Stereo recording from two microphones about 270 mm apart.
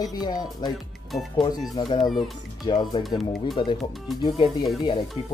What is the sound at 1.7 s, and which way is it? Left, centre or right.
Speech, centre.